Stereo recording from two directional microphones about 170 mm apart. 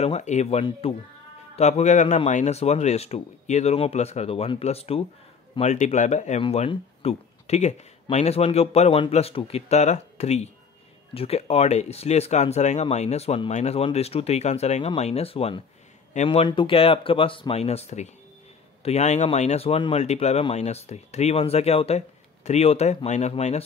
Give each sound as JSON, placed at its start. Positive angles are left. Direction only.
{"t": 0.0, "sound": "speech", "side_deg": 40}
{"t": 16.4, "sound": "speech", "side_deg": 30}